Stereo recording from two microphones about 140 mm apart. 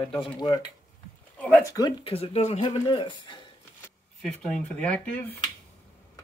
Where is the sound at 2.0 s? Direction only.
45° left (ahead or behind).